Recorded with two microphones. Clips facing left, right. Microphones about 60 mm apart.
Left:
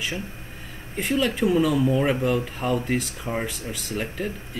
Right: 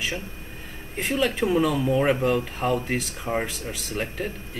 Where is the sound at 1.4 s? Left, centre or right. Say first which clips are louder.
Left 3 dB; centre.